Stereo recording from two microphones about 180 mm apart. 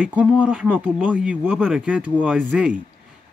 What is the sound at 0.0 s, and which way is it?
Speech, 10° right (ahead or behind).